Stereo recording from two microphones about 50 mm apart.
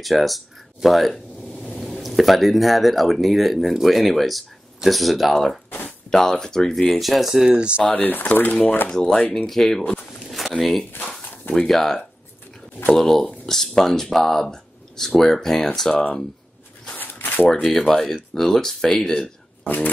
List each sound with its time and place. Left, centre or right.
0.0 s speech: centre
7.5 s speech: right
7.9 s speech: left
9.5 s speech: centre
10.2 s a sound: centre
10.6 s speech: centre
15.9 s speech: left
17.0 s shuffling cards: left
17.5 s speech: centre
19.6 s speech: left